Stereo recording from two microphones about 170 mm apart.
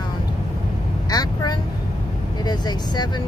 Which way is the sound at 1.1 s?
20° left (ahead or behind).